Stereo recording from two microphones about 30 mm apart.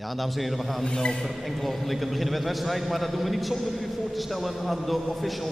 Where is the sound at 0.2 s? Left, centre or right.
Centre.